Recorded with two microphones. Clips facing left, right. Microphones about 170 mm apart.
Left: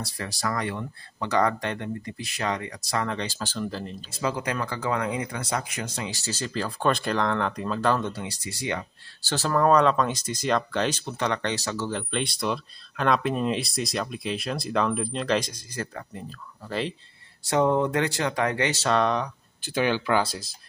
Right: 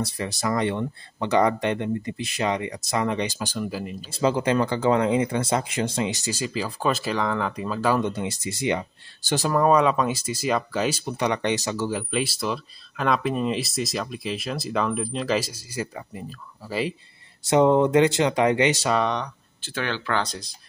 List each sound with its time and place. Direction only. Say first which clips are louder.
0.0 s speech: right 4 dB; 20° right (ahead or behind)
4.1 s speech: right 7 dB; 25° right (ahead or behind); by 8.0 s 5° right (ahead or behind)
8.0 s speech: right 5 dB; 20° right (ahead or behind)
17.4 s speech: right 4 dB; 20° right (ahead or behind)
18.9 s speech: even; centre (ahead or behind)
19.6 s speech: left 4 dB; 15° left (ahead or behind)